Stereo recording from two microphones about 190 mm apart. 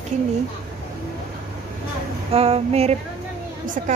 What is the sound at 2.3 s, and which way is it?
Speech, 30° right (ahead or behind).